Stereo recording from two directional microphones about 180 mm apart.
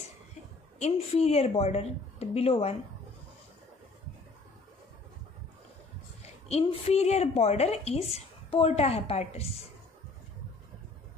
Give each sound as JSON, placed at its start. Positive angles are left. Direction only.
{"t": 0.7, "sound": "a woman's voice", "side_deg": 35}
{"t": 6.5, "sound": "a woman's voice", "side_deg": 35}